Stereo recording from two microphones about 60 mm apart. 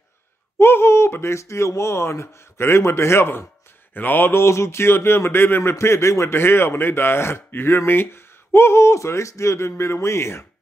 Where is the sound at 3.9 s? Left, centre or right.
Left.